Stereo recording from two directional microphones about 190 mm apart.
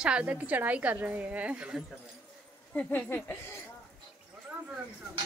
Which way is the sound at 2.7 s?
10° left (ahead or behind).